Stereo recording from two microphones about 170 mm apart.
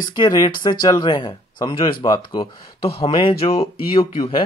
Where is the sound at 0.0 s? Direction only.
25° left (ahead or behind).